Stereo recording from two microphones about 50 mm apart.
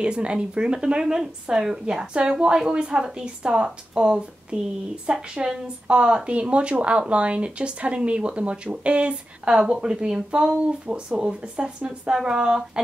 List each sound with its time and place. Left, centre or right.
0.0 s a woman's voice: right